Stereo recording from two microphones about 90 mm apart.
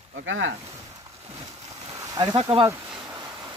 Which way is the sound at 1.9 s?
40° right (ahead or behind).